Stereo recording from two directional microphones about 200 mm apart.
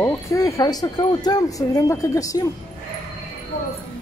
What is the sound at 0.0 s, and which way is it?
Speech, 15° left (ahead or behind).